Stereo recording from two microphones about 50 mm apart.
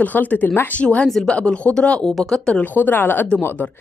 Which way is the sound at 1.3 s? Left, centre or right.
Left.